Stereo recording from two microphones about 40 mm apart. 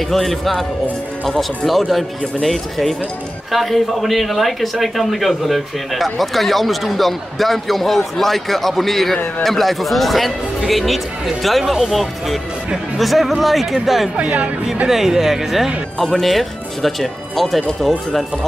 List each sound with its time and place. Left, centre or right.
0.1 s a man's voice: centre
14.1 s speech: right
14.9 s a man's voice: centre